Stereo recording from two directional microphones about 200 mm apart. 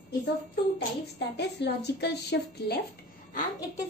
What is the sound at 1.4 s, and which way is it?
Speech, 55° left (ahead or behind).